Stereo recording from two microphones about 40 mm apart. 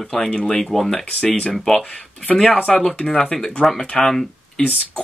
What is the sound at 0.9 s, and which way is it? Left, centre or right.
Speech, left.